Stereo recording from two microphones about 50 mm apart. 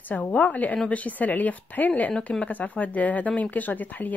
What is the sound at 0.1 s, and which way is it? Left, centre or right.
A woman's voice, left.